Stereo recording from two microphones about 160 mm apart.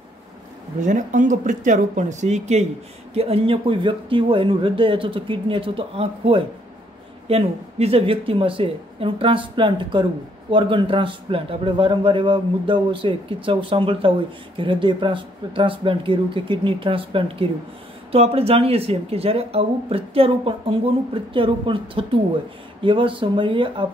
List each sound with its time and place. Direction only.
0.7 s speech: 50° right (ahead or behind); by 23.9 s 30° right (ahead or behind)